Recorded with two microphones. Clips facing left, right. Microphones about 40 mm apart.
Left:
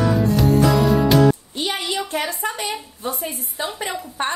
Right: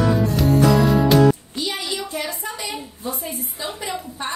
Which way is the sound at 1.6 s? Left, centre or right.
Left.